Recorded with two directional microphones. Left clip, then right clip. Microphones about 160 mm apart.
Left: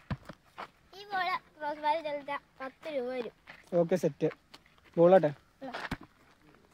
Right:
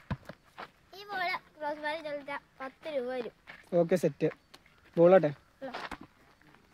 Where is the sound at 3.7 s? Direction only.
15° right (ahead or behind).